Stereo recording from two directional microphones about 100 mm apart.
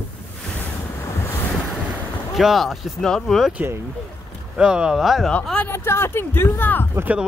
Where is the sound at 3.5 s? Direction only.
15° right (ahead or behind).